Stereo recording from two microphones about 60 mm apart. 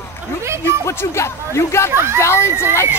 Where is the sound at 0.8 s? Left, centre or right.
Left.